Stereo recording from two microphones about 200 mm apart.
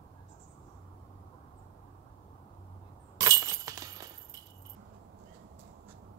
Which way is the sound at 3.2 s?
20° right (ahead or behind).